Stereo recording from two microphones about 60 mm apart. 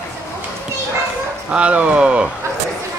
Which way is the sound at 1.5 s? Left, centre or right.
Centre.